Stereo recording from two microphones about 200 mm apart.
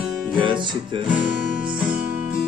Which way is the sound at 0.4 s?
25° right (ahead or behind).